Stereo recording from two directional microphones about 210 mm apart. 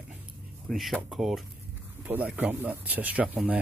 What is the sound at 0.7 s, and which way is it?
Speech, centre (ahead or behind).